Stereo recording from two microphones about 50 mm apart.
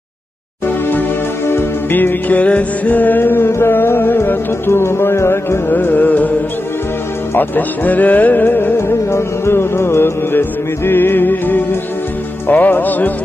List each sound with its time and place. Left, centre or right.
0.7 s music: left
5.7 s music: left
7.3 s music: left